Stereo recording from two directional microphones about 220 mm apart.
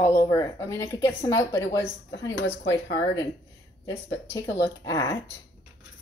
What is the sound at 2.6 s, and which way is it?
Speech, 50° left (ahead or behind).